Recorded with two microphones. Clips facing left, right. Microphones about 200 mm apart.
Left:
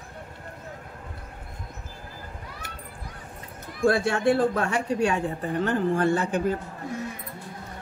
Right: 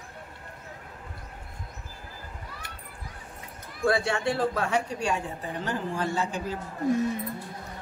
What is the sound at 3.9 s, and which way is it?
Speech, 55° left (ahead or behind).